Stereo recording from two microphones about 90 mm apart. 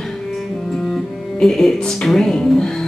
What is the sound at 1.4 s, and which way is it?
Speech, 5° left (ahead or behind).